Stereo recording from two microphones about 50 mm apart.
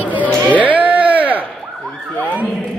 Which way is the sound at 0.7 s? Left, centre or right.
Right.